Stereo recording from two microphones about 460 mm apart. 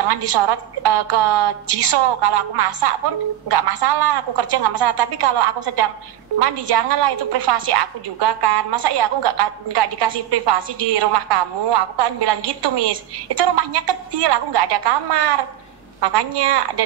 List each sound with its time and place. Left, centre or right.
0.1 s a woman's voice: right